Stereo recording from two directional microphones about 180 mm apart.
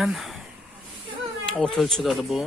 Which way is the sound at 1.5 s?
5° left (ahead or behind).